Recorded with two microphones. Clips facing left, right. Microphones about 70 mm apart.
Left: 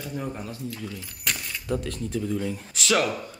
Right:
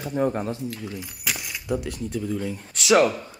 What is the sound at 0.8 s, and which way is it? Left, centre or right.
Speech, centre.